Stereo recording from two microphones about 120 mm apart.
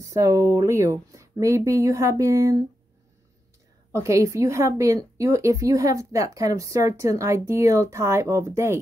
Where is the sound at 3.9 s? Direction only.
25° right (ahead or behind).